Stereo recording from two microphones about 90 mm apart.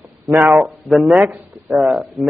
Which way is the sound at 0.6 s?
Centre (ahead or behind).